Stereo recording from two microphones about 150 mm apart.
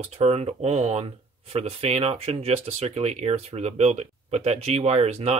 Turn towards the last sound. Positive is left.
turn(degrees=-45)  # may be behind; listen again after turning